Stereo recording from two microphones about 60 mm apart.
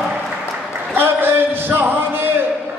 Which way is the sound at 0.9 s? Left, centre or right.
Right.